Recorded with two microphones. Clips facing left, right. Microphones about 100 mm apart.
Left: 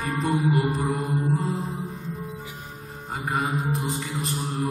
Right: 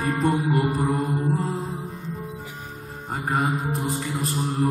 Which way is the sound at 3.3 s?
35° right (ahead or behind).